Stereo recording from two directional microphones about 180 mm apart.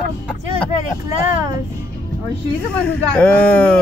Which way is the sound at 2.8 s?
5° left (ahead or behind).